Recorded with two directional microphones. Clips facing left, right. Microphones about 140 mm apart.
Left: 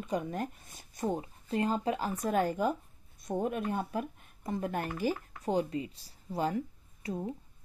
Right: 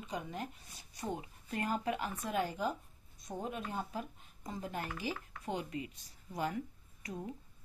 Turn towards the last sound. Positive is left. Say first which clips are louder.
# left 7 dB
turn(degrees=30)  # may be behind; listen again after turning